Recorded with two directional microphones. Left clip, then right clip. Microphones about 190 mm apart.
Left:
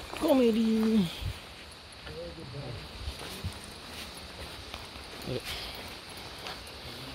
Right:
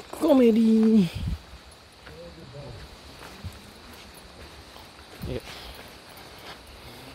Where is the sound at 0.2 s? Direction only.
50° right (ahead or behind).